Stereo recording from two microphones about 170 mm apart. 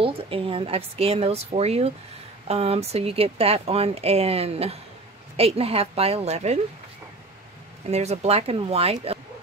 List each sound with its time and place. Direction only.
0.0 s speech: 35° right (ahead or behind)
7.9 s speech: 40° right (ahead or behind)